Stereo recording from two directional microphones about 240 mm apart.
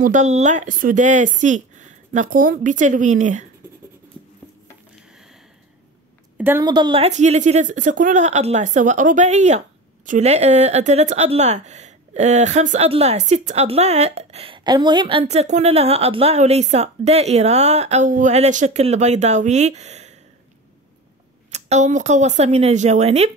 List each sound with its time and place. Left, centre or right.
0.0 s speech: right
6.3 s a woman's voice: centre; by 20.2 s right
21.5 s a woman's voice: right